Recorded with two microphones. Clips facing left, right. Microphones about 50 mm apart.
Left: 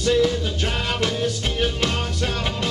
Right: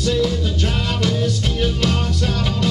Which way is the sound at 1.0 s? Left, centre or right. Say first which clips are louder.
Right 4 dB; centre.